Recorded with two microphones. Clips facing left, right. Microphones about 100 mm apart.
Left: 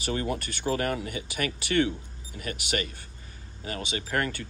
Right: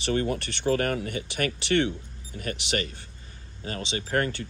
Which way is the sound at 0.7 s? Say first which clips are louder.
Right 2 dB; 45° right (ahead or behind).